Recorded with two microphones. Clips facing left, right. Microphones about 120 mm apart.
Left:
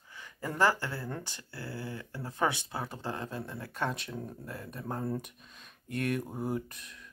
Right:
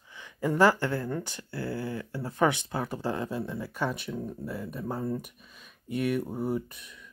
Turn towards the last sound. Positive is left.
turn(degrees=0)  # may be behind; listen again after turning